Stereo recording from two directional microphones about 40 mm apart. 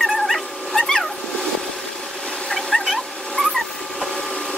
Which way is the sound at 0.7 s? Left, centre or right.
Centre.